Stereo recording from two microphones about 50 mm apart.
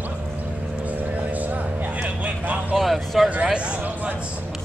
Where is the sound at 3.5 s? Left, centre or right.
Right.